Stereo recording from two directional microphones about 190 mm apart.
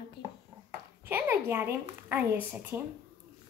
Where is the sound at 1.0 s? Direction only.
10° right (ahead or behind).